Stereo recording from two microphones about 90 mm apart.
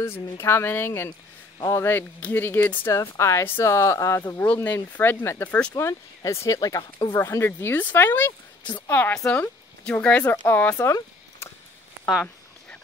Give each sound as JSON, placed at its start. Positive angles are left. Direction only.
{"t": 0.0, "sound": "speech", "side_deg": 25}
{"t": 2.9, "sound": "speech", "side_deg": 35}
{"t": 4.2, "sound": "speech", "side_deg": 20}
{"t": 5.4, "sound": "speech", "side_deg": 15}
{"t": 5.8, "sound": "speech", "side_deg": 30}
{"t": 9.1, "sound": "speech", "side_deg": 10}